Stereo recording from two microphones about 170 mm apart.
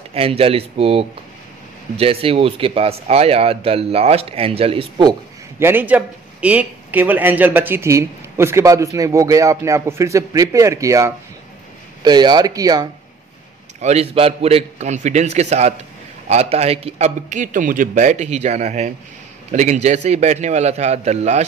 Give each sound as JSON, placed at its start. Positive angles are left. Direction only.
{"t": 0.1, "sound": "speech", "side_deg": -35}
{"t": 5.6, "sound": "speech", "side_deg": -10}
{"t": 13.7, "sound": "a man's voice", "side_deg": -40}